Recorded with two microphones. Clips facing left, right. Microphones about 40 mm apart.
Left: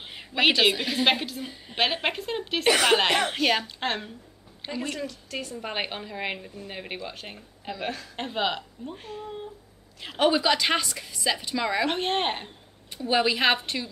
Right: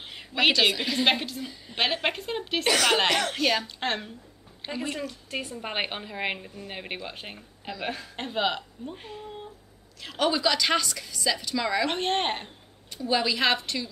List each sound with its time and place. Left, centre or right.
0.1 s a sound: centre
0.6 s speech: centre
1.4 s a woman's voice: left
1.8 s speech: centre
2.6 s a woman's voice: centre
4.6 s speech: centre
4.9 s a woman's voice: centre
8.2 s speech: centre
10.0 s a woman's voice: left
11.8 s speech: centre
12.9 s a woman's voice: left